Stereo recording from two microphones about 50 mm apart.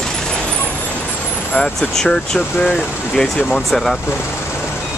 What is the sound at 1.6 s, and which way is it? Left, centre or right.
Speech, centre.